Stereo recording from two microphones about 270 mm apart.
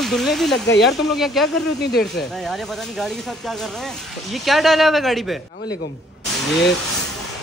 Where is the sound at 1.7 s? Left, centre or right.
Left.